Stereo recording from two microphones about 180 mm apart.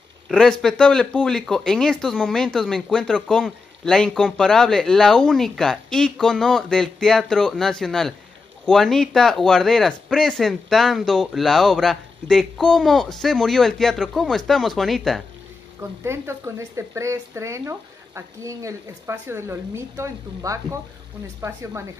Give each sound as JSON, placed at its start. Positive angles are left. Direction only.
{"t": 0.3, "sound": "speech", "side_deg": 5}
{"t": 15.8, "sound": "speech", "side_deg": -15}